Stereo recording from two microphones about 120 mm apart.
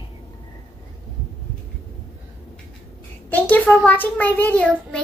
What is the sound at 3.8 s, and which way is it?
A child's voice, 10° left (ahead or behind).